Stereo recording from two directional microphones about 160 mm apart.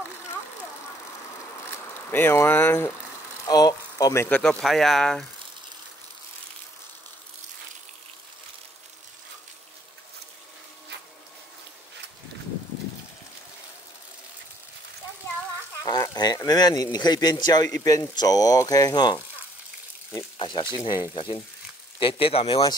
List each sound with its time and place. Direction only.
2.0 s speech: 15° left (ahead or behind)
4.4 s speech: 5° left (ahead or behind)
15.8 s speech: 25° left (ahead or behind)
20.3 s speech: 30° left (ahead or behind)